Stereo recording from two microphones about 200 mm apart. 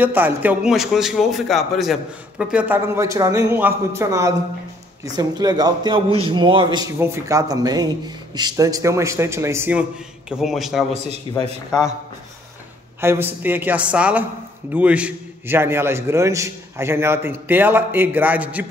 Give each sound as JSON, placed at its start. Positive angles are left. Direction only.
{"t": 0.0, "sound": "a man's voice", "side_deg": -10}
{"t": 11.3, "sound": "a man's voice", "side_deg": 25}
{"t": 13.0, "sound": "a man's voice", "side_deg": -10}